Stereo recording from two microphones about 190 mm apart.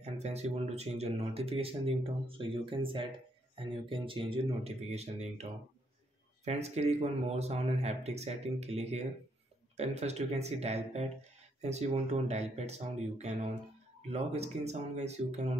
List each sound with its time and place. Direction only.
0.0 s a man's voice: 35° right (ahead or behind)